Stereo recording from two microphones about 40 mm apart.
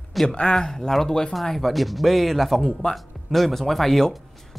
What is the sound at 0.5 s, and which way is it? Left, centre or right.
Speech, centre.